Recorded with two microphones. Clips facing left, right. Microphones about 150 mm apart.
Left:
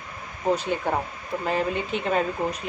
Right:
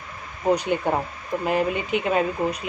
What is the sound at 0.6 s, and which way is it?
Speech, 15° right (ahead or behind).